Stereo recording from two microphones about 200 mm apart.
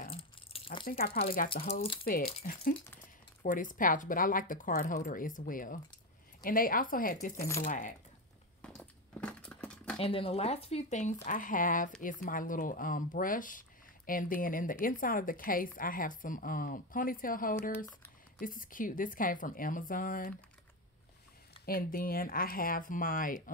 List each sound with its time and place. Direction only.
0.1 s keys jangling: 30° left (ahead or behind)
0.8 s speech: 45° left (ahead or behind)
1.5 s speech: 30° left (ahead or behind)
2.0 s speech: 45° left (ahead or behind)
8.6 s a sound: 5° left (ahead or behind)
9.9 s speech: 30° left (ahead or behind); by 20.3 s 45° left (ahead or behind)
21.6 s speech: 45° left (ahead or behind)